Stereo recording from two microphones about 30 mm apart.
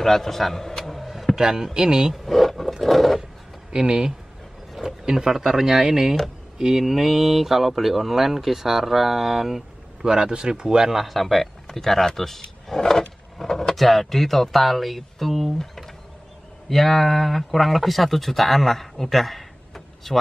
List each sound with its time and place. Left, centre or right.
0.0 s a man's voice: centre
1.3 s speech: centre
2.2 s speech: centre
3.7 s speech: right
5.3 s speech: centre
10.0 s speech: right
10.9 s speech: centre
11.1 s a sound: centre
11.8 s speech: centre
13.4 s vehicle: centre
13.7 s speech: centre
19.7 s a sound: centre